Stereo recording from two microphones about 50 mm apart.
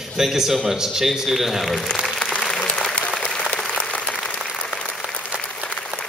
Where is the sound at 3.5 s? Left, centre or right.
Centre.